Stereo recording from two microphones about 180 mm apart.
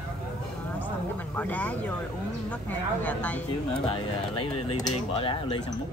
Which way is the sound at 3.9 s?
30° left (ahead or behind).